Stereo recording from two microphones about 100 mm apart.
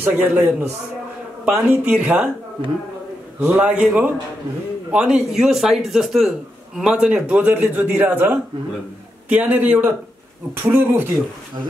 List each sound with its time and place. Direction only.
0.0 s a man's voice: 20° right (ahead or behind)